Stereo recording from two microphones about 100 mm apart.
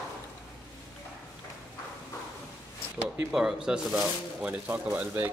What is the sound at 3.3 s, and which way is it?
Speech, 5° right (ahead or behind).